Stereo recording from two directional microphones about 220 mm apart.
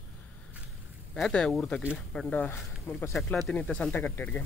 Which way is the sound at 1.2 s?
5° left (ahead or behind).